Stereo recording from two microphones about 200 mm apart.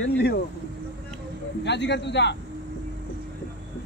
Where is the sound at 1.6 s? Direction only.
60° left (ahead or behind).